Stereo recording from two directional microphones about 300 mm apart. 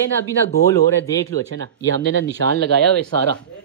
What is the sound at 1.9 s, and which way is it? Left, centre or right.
Speech, right.